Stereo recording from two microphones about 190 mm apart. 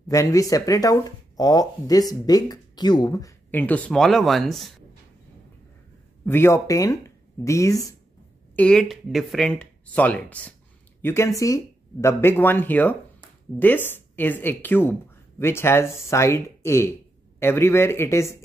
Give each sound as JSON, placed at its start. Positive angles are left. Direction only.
{"t": 0.1, "sound": "speech", "side_deg": 15}
{"t": 6.2, "sound": "speech", "side_deg": 15}
{"t": 8.5, "sound": "speech", "side_deg": 5}